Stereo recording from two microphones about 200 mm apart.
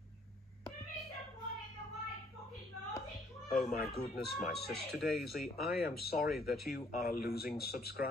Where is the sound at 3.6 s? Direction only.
45° left (ahead or behind).